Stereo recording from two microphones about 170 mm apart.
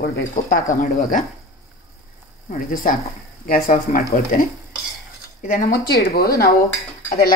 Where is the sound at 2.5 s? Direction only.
50° left (ahead or behind); by 6.5 s 65° left (ahead or behind).